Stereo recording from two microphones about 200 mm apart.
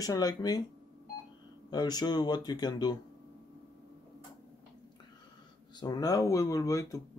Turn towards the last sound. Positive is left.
turn(degrees=15)  # may be behind; listen again after turning